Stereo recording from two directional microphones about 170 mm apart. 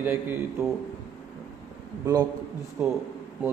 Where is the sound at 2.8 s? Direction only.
10° right (ahead or behind).